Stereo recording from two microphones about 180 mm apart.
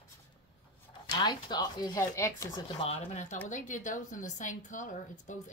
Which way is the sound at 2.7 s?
35° left (ahead or behind).